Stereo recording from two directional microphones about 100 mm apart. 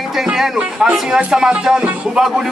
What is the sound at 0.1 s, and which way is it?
Speech, 5° right (ahead or behind).